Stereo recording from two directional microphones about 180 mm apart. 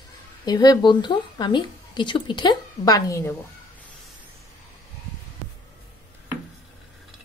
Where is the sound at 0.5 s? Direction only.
20° left (ahead or behind).